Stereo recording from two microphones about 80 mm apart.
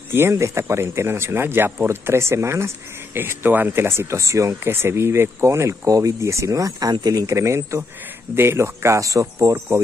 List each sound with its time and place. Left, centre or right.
0.1 s speech: right
3.2 s speech: right